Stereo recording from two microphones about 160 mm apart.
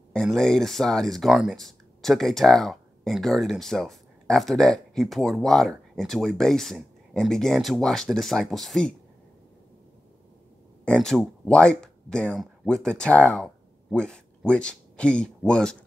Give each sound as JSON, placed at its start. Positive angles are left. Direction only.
{"t": 0.1, "sound": "speech", "side_deg": 5}
{"t": 10.9, "sound": "speech", "side_deg": 5}